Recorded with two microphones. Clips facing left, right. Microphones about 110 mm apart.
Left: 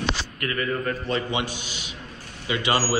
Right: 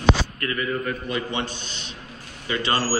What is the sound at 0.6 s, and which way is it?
Speech, 35° left (ahead or behind).